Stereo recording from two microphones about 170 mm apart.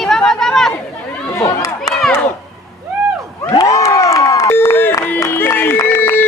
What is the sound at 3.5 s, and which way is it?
Crowd, 15° left (ahead or behind).